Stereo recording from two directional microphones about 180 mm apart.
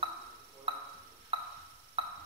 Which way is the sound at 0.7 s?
30° right (ahead or behind).